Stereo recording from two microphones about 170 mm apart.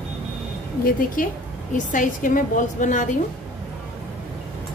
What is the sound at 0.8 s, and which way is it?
A woman's voice, 55° left (ahead or behind).